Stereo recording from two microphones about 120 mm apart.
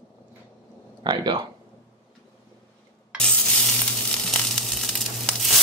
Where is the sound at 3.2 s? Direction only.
5° left (ahead or behind).